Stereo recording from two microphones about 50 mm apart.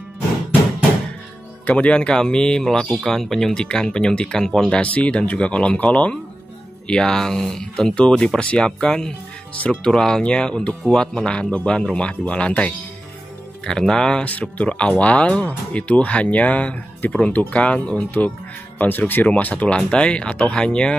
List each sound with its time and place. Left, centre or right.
1.7 s speech: left
4.7 s speech: left
6.9 s speech: centre
13.7 s speech: centre
14.2 s speech: left
18.8 s speech: left; by 20.9 s centre